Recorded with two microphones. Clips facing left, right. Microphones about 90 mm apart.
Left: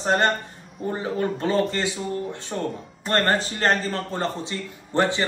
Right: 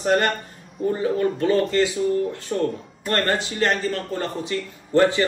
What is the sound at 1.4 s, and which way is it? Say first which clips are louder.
Speech: right 4 dB; 30° left (ahead or behind).